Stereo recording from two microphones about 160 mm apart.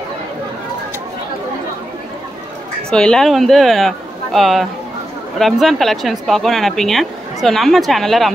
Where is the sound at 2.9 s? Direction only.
5° left (ahead or behind).